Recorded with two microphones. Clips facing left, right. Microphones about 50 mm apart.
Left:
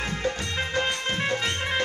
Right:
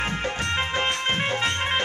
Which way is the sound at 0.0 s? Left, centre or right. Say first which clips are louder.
Right 2 dB; right.